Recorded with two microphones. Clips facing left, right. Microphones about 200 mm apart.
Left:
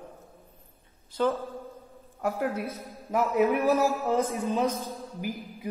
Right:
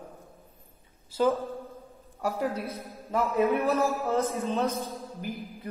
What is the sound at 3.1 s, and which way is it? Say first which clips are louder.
A man's voice: left 1 dB; 15° left (ahead or behind).